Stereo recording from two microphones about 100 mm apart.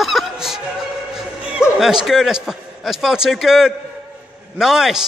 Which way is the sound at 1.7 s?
5° right (ahead or behind).